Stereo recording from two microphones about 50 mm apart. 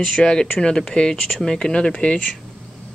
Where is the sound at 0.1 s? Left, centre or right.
Centre.